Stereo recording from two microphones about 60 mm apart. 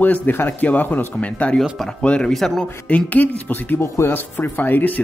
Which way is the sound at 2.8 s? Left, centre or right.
Left.